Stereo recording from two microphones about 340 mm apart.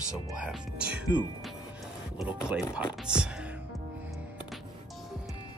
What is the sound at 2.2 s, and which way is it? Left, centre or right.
Speech, centre.